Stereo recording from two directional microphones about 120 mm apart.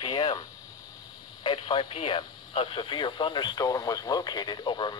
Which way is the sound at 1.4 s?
40° left (ahead or behind).